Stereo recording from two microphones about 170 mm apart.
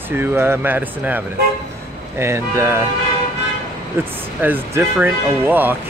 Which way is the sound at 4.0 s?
15° right (ahead or behind).